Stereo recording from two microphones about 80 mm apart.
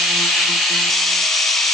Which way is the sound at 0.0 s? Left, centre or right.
Centre.